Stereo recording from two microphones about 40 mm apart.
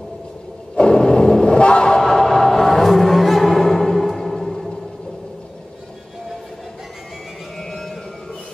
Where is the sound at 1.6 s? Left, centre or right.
Left.